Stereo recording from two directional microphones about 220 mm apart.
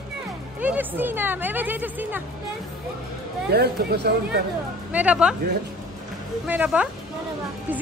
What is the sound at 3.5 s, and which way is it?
Speech, 45° right (ahead or behind).